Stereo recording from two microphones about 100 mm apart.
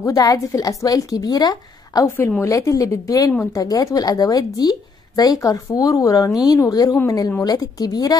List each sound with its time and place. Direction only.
0.0 s a woman's voice: 35° left (ahead or behind)
2.0 s a woman's voice: 25° left (ahead or behind); by 8.2 s 40° left (ahead or behind)